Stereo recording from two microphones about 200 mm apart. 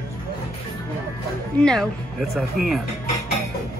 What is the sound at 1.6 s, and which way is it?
Speech, centre (ahead or behind).